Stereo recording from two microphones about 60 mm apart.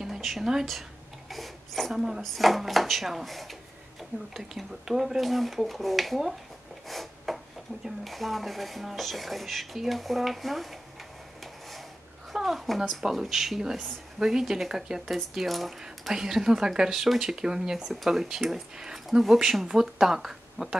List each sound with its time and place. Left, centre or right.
0.0 s speech: centre
1.3 s a sound: centre
2.0 s speech: centre
6.9 s a sound: centre
7.8 s speech: centre
12.4 s a woman's voice: centre